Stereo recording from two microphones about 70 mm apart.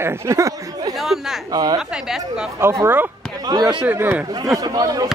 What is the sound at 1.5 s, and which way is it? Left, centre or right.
Speech, right.